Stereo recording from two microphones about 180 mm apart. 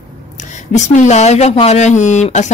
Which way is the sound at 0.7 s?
40° left (ahead or behind).